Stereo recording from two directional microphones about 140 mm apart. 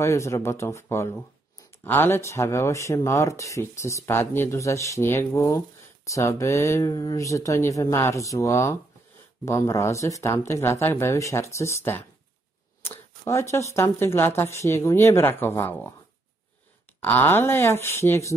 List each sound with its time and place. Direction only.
0.0 s speech: 20° left (ahead or behind)
17.0 s speech: 15° left (ahead or behind)